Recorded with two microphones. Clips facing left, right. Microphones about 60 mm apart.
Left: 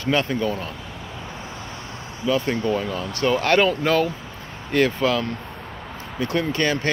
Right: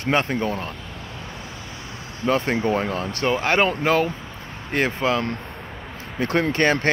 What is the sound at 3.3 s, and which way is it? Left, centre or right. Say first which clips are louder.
Speech: left 2 dB; right.